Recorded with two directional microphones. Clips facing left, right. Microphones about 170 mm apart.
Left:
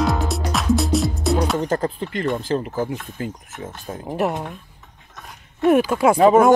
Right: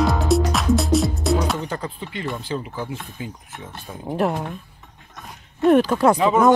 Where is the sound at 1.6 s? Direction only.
45° left (ahead or behind).